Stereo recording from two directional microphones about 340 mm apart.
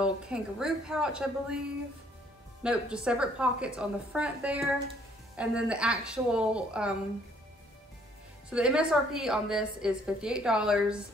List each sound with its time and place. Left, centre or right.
0.0 s a woman's voice: centre
2.6 s a woman's voice: centre
8.5 s a woman's voice: centre